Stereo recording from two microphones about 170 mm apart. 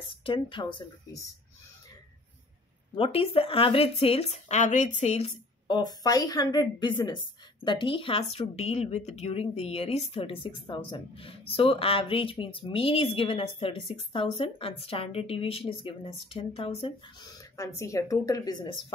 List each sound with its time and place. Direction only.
0.1 s speech: 30° left (ahead or behind)
3.0 s speech: 35° left (ahead or behind)
5.8 s speech: 20° left (ahead or behind)
17.4 s speech: 15° left (ahead or behind)